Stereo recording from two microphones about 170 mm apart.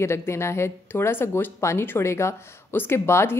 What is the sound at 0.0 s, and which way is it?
Speech, 15° left (ahead or behind).